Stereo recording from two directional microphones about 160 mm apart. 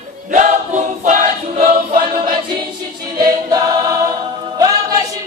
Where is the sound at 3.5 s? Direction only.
25° right (ahead or behind).